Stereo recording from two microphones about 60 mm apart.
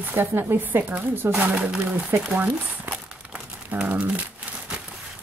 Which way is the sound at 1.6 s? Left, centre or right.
Centre.